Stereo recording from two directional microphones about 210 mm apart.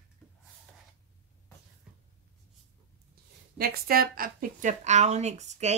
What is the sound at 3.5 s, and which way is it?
Speech, 45° right (ahead or behind).